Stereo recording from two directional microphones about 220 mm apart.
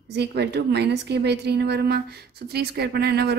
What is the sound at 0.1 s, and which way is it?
Speech, 50° right (ahead or behind).